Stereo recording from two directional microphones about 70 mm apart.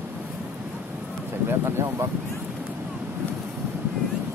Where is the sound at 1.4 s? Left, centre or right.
Right.